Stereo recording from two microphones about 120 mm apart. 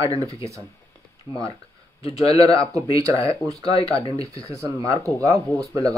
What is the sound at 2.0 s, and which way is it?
Speech, 30° right (ahead or behind).